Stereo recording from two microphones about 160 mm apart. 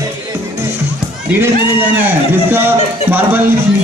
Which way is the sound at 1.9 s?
10° right (ahead or behind).